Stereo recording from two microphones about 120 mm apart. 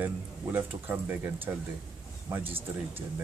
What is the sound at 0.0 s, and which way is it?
Speech, 15° right (ahead or behind).